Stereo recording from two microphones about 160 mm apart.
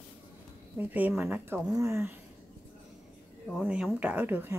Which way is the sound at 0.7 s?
10° right (ahead or behind).